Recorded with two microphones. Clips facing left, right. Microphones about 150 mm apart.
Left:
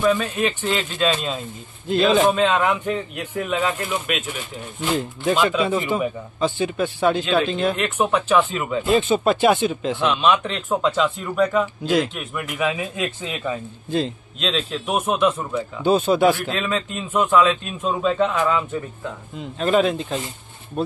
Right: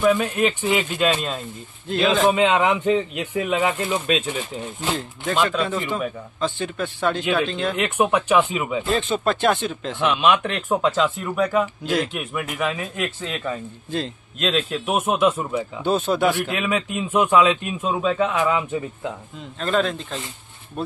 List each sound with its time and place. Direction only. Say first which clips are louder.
0.0 s a man's voice: right 1 dB; 5° right (ahead or behind)
2.3 s a man's voice: right 1 dB; 15° right (ahead or behind)
4.9 s speech: left 4 dB; 10° left (ahead or behind)
7.7 s a man's voice: right 1 dB; 10° right (ahead or behind)
8.8 s a man's voice: left 6 dB; 5° left (ahead or behind)
12.5 s a man's voice: left 3 dB; 15° left (ahead or behind)
16.3 s a man's voice: right 1 dB; 15° right (ahead or behind)
19.6 s speech: left 4 dB; 10° left (ahead or behind)